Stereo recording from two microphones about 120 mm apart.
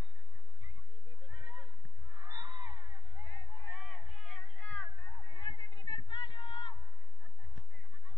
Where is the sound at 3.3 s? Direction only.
20° left (ahead or behind).